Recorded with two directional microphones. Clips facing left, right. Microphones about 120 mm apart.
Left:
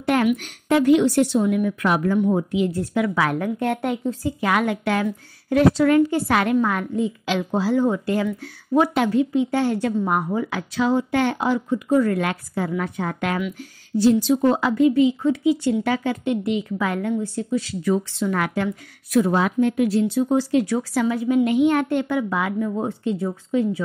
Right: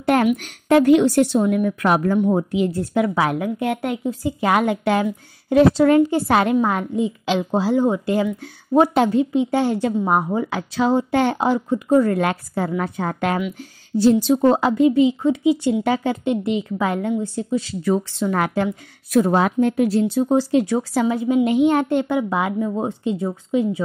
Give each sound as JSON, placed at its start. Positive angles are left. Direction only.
{"t": 0.0, "sound": "a woman's voice", "side_deg": -40}
{"t": 0.7, "sound": "a woman's voice", "side_deg": -50}
{"t": 3.3, "sound": "a woman's voice", "side_deg": -10}
{"t": 4.4, "sound": "speech", "side_deg": -25}
{"t": 8.7, "sound": "speech", "side_deg": -30}